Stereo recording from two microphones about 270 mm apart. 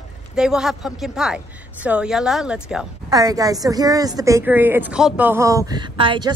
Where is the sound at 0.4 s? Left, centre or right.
Centre.